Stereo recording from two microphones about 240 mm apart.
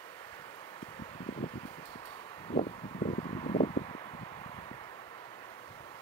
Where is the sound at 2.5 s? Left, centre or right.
Left.